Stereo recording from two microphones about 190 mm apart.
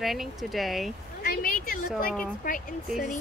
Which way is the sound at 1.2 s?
50° left (ahead or behind).